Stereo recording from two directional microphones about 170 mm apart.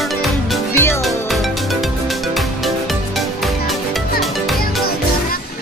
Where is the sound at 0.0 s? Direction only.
Centre (ahead or behind).